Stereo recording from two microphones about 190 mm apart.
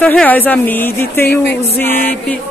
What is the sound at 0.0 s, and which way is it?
Speech, 5° left (ahead or behind).